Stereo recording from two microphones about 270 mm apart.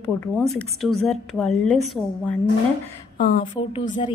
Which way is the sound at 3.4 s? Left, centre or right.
Centre.